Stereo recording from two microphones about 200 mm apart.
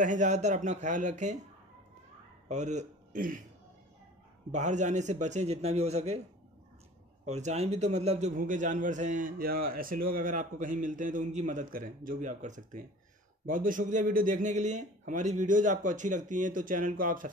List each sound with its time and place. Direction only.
0.0 s a man's voice: 40° right (ahead or behind)
2.4 s a man's voice: 35° right (ahead or behind)
4.5 s a man's voice: 35° right (ahead or behind)
7.2 s a man's voice: 35° right (ahead or behind)